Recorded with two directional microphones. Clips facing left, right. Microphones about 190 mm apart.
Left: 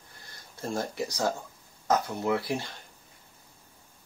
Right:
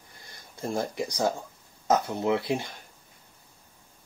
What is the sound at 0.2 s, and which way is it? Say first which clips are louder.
Speech: right 2 dB; 15° right (ahead or behind).